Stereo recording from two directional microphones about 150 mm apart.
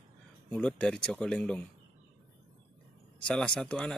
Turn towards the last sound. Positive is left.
turn(degrees=5)  # may be behind; listen again after turning